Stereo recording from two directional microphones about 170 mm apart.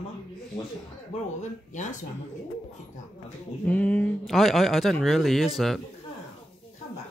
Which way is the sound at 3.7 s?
10° left (ahead or behind).